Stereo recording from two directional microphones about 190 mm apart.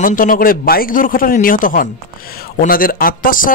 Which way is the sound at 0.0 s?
45° left (ahead or behind).